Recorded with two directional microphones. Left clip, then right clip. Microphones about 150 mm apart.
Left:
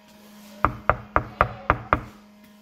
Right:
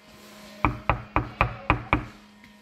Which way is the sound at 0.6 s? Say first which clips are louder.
Left 3 dB; 20° left (ahead or behind).